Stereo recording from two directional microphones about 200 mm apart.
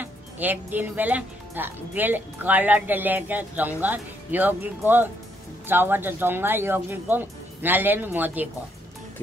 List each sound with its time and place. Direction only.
0.0 s speech: 10° right (ahead or behind)